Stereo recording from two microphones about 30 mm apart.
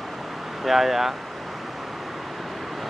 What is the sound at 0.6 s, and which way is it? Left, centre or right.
Speech, centre.